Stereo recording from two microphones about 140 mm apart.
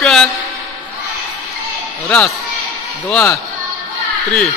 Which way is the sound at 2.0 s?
10° left (ahead or behind).